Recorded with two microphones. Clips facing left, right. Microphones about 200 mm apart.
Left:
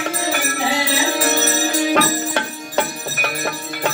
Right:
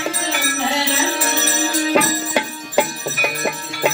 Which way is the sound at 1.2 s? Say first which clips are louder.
Left 2 dB; 45° left (ahead or behind).